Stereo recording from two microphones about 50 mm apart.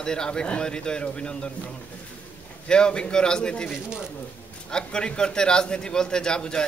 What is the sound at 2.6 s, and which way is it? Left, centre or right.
A man's voice, centre.